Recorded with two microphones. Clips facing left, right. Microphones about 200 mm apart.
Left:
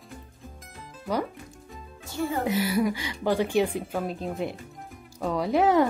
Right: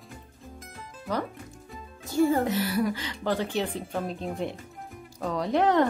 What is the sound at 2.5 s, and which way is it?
Speech, 10° left (ahead or behind).